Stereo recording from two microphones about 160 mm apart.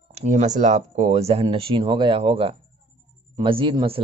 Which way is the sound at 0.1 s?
45° right (ahead or behind).